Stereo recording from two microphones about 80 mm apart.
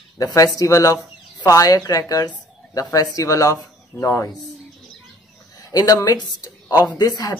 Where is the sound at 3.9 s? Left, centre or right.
Left.